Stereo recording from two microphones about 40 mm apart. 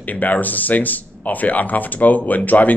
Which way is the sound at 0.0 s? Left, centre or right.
Left.